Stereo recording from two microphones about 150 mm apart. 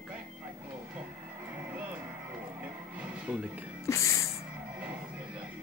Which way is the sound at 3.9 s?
20° left (ahead or behind).